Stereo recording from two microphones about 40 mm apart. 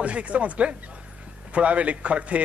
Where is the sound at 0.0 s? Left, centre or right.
Right.